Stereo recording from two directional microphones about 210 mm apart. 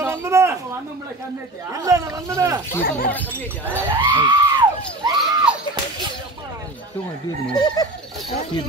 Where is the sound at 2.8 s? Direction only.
45° left (ahead or behind).